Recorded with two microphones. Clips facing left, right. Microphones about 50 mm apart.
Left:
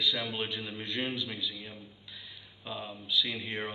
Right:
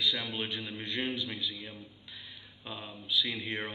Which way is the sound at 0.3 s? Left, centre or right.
Centre.